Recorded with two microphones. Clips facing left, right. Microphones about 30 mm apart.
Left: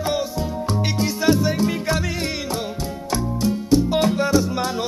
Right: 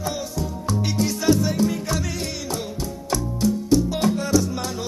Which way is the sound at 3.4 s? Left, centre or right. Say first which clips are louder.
Left 1 dB; left.